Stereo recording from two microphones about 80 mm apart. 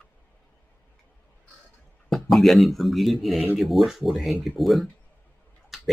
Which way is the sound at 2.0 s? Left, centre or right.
Centre.